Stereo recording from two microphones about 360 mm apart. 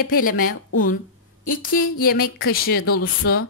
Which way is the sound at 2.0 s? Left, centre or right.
Left.